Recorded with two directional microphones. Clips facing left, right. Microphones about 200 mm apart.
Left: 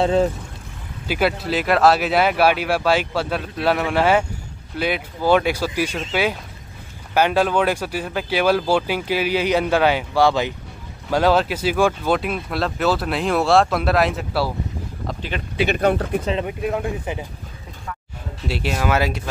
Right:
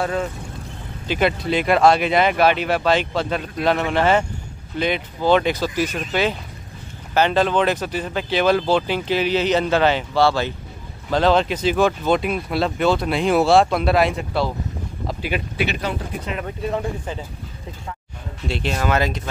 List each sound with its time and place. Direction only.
0.0 s speech: 25° left (ahead or behind)
1.0 s speech: 5° left (ahead or behind)
7.2 s speech: 10° left (ahead or behind)
15.0 s a sound: 10° right (ahead or behind)
15.7 s speech: 55° left (ahead or behind)
16.4 s speech: 5° left (ahead or behind)
18.5 s speech: 5° left (ahead or behind)